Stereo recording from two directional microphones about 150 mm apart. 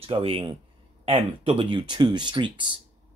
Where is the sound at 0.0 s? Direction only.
40° right (ahead or behind).